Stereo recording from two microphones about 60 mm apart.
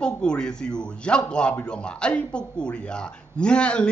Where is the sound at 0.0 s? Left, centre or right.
Centre.